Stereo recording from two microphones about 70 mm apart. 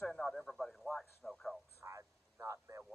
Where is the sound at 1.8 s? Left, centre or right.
Right.